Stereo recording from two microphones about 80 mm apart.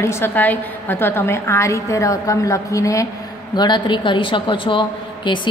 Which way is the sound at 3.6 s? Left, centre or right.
Left.